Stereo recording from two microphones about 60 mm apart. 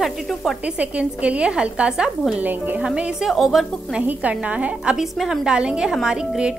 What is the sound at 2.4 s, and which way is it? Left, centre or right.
Speech, right.